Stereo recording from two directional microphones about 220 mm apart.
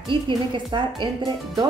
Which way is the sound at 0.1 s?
20° right (ahead or behind).